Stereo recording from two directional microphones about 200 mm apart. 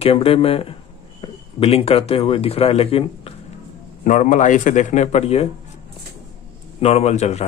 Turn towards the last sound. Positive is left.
turn(degrees=35)  # may be behind; listen again after turning